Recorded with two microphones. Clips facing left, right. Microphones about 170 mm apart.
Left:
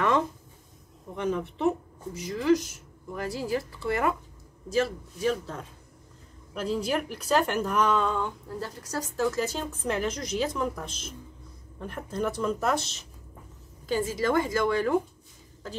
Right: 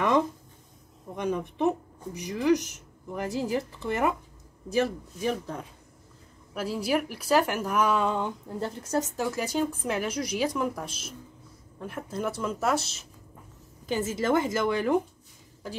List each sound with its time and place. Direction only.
1.1 s speech: 15° right (ahead or behind)
13.8 s a woman's voice: 20° right (ahead or behind)